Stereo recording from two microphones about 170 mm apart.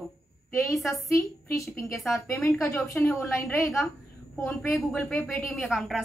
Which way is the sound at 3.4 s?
15° left (ahead or behind).